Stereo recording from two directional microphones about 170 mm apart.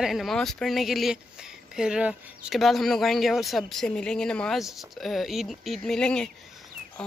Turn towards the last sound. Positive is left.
turn(degrees=5)  # may be behind; listen again after turning